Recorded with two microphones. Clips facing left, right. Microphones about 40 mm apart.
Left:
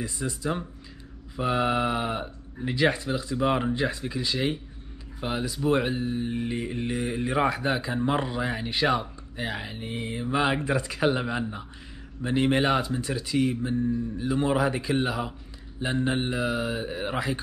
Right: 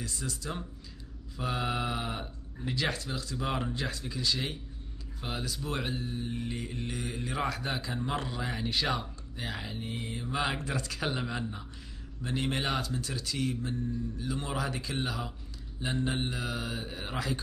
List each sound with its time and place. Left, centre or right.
0.0 s speech: left